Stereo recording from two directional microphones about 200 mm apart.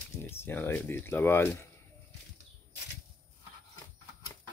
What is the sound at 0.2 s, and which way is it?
Speech, 10° left (ahead or behind).